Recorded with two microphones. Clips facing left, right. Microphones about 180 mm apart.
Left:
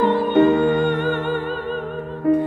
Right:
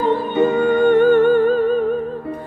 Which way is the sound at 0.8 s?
50° right (ahead or behind).